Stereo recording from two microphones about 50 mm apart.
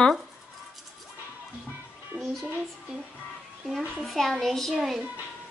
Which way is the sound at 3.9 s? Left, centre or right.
Centre.